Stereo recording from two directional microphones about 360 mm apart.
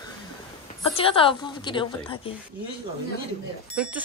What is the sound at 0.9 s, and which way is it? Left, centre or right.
A woman's voice, centre.